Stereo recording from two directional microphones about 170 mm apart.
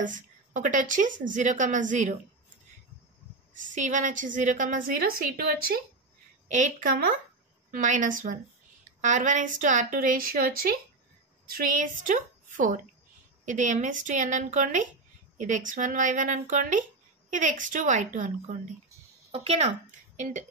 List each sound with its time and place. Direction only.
0.0 s a woman's voice: 50° right (ahead or behind)
3.5 s a woman's voice: 50° right (ahead or behind); by 5.8 s 65° right (ahead or behind)
6.5 s a woman's voice: 45° right (ahead or behind)